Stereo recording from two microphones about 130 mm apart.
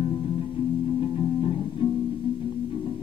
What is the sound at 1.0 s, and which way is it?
Music, 45° left (ahead or behind).